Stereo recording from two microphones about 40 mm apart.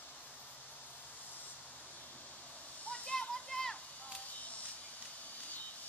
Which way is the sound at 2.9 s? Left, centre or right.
Left.